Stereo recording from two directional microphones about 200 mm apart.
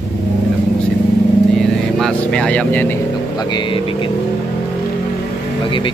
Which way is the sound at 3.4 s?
20° left (ahead or behind).